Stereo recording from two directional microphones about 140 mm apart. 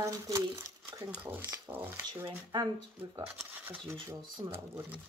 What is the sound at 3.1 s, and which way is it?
Speech, 20° right (ahead or behind).